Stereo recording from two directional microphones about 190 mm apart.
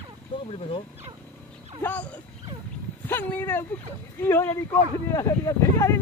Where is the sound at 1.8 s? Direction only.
10° left (ahead or behind).